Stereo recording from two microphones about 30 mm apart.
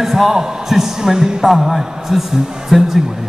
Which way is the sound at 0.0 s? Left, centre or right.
Centre.